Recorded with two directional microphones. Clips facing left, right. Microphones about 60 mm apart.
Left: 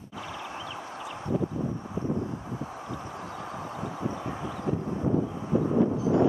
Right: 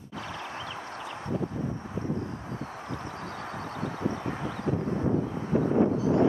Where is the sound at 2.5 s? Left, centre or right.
Centre.